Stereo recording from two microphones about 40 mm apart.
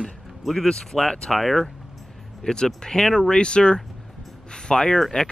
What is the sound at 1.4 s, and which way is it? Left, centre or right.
Speech, centre.